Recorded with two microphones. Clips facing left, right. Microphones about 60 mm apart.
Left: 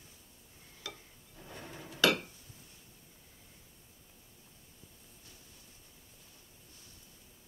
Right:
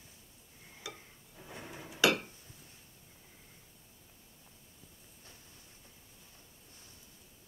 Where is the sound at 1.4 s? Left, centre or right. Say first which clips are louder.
Even; centre.